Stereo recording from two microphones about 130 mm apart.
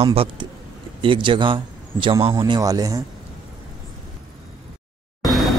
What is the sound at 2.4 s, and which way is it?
Speech, 30° right (ahead or behind).